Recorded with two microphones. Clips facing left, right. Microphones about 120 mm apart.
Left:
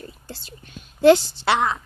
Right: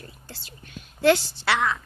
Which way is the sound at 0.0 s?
30° left (ahead or behind).